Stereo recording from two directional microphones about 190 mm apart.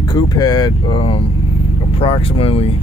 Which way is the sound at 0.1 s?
20° left (ahead or behind).